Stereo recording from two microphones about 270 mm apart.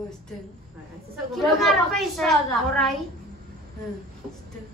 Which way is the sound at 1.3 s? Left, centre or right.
Centre.